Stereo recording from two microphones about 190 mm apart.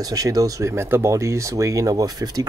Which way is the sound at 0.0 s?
20° right (ahead or behind).